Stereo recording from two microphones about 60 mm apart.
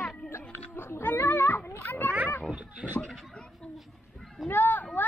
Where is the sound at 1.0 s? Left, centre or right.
Left.